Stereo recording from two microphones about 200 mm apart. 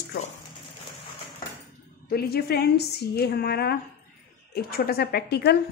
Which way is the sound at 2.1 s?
50° left (ahead or behind).